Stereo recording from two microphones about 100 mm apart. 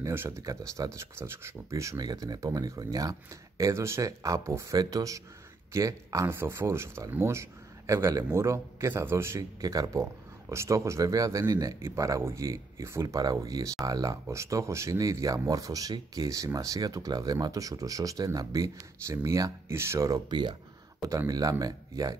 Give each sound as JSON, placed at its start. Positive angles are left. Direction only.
{"t": 0.0, "sound": "speech", "side_deg": -25}
{"t": 2.0, "sound": "speech", "side_deg": -40}
{"t": 20.2, "sound": "speech", "side_deg": -50}
{"t": 21.3, "sound": "speech", "side_deg": -40}